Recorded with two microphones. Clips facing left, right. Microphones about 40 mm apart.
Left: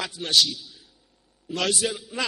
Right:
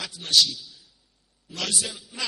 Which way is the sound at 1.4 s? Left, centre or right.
Left.